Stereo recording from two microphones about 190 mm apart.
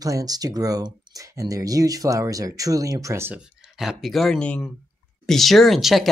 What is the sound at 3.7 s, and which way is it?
Speech, centre (ahead or behind).